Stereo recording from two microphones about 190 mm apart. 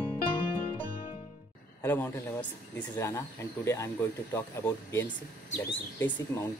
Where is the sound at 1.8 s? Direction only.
10° left (ahead or behind).